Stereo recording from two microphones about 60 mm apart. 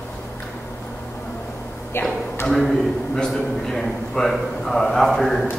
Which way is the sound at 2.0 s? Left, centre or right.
Left.